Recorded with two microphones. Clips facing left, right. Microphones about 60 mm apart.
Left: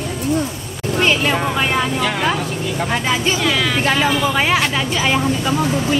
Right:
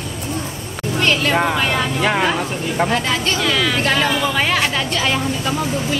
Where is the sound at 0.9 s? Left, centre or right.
Centre.